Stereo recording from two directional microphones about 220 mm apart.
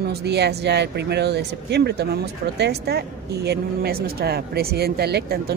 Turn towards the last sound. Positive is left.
turn(degrees=-45)  # may be behind; listen again after turning